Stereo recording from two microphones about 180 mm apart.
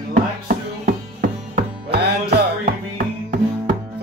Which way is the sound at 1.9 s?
65° right (ahead or behind).